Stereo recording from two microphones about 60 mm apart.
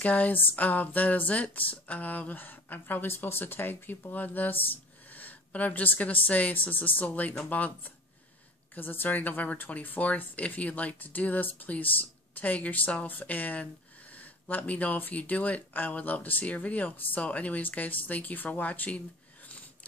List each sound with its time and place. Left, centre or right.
0.0 s speech: left